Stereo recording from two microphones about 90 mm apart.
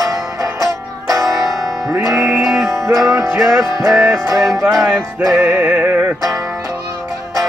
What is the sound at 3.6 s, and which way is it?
Music, 40° right (ahead or behind).